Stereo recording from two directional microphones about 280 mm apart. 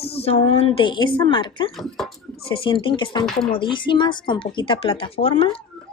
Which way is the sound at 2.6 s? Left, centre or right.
Centre.